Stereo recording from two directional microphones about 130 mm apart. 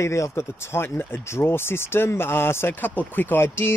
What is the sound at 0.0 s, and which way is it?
Speech, 20° left (ahead or behind).